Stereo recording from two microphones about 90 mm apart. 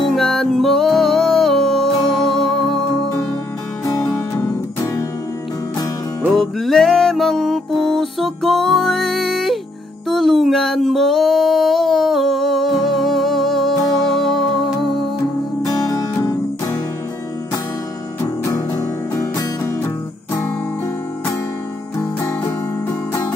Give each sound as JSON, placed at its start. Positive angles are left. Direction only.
{"t": 0.1, "sound": "music", "side_deg": 5}
{"t": 6.3, "sound": "music", "side_deg": 0}
{"t": 15.7, "sound": "music", "side_deg": 40}
{"t": 18.2, "sound": "music", "side_deg": 35}